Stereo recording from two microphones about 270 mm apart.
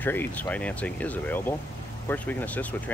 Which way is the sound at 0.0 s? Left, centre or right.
Centre.